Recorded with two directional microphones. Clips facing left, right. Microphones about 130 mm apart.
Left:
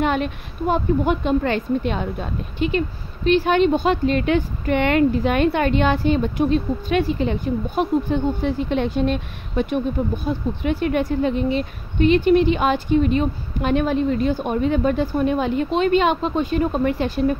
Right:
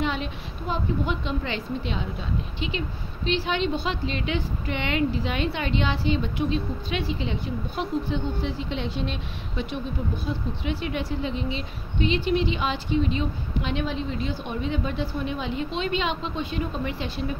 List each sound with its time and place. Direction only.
0.0 s a woman's voice: 55° left (ahead or behind)